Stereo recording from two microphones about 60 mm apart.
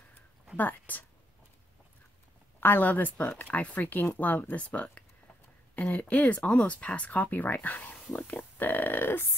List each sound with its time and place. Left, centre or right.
0.6 s speech: left
2.6 s speech: left